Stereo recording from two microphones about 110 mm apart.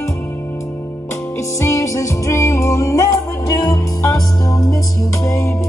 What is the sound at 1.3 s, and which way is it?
Music, 25° left (ahead or behind).